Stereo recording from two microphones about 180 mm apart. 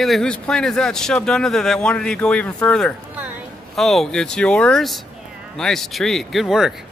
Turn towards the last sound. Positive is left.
turn(degrees=-5)  # may be behind; listen again after turning